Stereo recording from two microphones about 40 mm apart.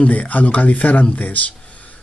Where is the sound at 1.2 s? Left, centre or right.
Left.